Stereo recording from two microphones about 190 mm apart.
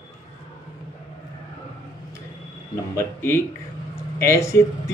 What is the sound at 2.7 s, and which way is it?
Speech, 15° left (ahead or behind).